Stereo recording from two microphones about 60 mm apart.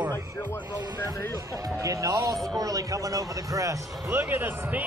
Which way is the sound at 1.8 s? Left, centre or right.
Right.